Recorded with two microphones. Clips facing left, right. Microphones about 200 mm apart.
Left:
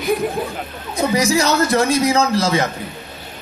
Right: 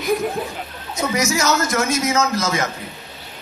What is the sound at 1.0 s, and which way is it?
Speech, 30° left (ahead or behind).